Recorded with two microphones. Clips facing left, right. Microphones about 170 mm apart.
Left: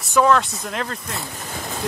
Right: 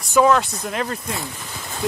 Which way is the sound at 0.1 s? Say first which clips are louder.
Right 1 dB; 5° right (ahead or behind).